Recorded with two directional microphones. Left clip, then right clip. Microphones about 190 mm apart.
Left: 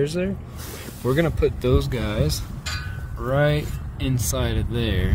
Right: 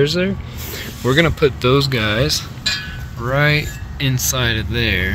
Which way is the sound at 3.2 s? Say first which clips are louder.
Right 5 dB; 20° left (ahead or behind).